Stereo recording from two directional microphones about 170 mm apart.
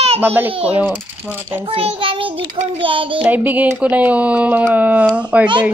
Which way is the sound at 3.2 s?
10° right (ahead or behind).